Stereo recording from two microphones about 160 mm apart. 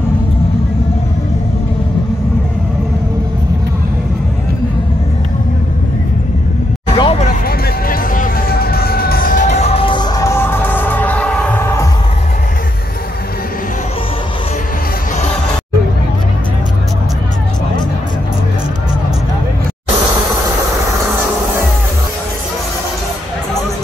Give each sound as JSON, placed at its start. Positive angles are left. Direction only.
{"t": 7.0, "sound": "vehicle", "side_deg": 40}
{"t": 7.4, "sound": "music", "side_deg": 65}